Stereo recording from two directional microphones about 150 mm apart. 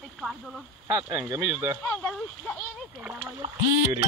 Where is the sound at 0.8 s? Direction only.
20° right (ahead or behind).